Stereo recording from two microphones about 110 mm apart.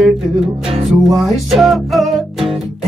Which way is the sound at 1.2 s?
Centre (ahead or behind).